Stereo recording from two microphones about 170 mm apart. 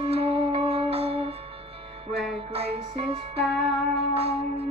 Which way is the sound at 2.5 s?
35° right (ahead or behind).